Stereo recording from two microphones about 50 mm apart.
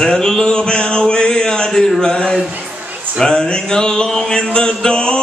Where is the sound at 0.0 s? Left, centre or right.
Centre.